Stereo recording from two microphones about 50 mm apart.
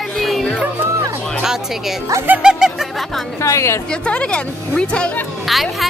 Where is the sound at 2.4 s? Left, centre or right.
Centre.